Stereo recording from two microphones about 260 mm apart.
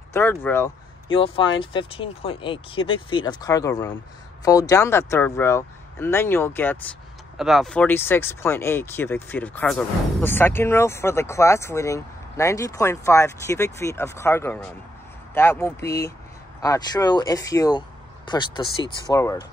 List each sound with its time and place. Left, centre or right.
0.1 s speech: centre
1.1 s speech: left